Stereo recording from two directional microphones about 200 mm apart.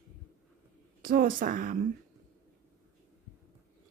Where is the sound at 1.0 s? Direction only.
45° right (ahead or behind).